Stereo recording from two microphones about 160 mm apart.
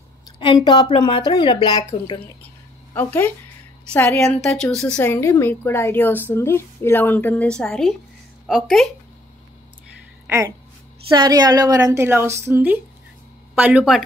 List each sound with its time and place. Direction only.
0.4 s speech: 30° left (ahead or behind)
2.9 s speech: 15° left (ahead or behind)
4.4 s speech: 5° left (ahead or behind)
10.2 s a woman's voice: 15° right (ahead or behind)